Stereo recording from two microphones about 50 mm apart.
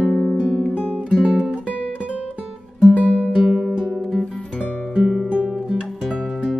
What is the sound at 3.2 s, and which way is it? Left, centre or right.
Music, centre.